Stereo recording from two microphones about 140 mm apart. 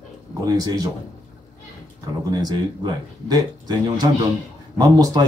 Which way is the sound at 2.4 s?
30° right (ahead or behind).